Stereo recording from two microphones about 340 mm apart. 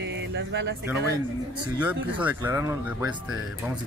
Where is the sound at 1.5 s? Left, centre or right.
Centre.